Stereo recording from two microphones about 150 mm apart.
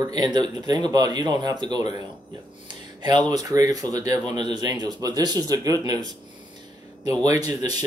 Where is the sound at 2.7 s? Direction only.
30° right (ahead or behind).